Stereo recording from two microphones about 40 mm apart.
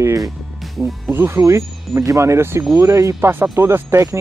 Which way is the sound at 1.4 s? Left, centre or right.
Right.